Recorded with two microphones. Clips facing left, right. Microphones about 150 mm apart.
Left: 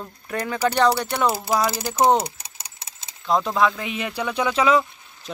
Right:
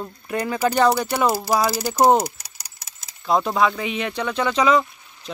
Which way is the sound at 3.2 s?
5° right (ahead or behind).